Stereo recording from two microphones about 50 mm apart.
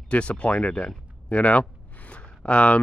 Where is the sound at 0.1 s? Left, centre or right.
Left.